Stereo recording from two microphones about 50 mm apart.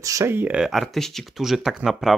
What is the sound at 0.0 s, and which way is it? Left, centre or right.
Speech, right.